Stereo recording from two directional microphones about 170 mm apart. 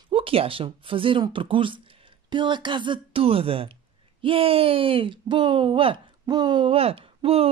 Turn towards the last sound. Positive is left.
turn(degrees=-35)  # may be behind; listen again after turning